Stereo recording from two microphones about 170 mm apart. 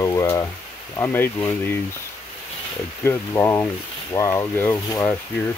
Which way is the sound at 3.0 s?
15° left (ahead or behind).